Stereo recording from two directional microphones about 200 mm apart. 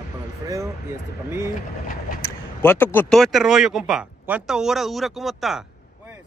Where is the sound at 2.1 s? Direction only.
45° left (ahead or behind).